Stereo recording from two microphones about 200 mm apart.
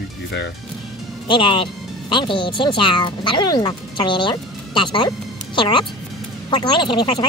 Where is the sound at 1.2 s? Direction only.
25° left (ahead or behind).